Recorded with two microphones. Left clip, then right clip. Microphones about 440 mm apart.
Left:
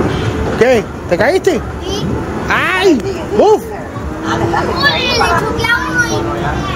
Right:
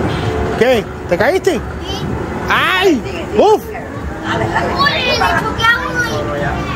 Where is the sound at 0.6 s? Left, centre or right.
Centre.